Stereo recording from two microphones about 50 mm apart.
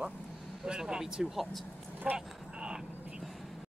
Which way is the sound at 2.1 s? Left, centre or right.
Centre.